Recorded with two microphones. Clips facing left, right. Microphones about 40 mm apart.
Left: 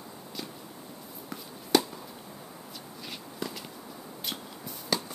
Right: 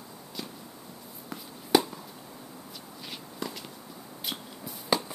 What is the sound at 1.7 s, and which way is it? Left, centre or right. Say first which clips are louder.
Chop: right 1 dB; centre.